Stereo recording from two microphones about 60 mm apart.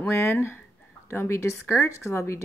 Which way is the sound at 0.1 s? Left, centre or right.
Left.